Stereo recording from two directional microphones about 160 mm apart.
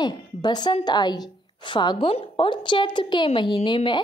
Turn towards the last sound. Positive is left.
turn(degrees=30)  # may be behind; listen again after turning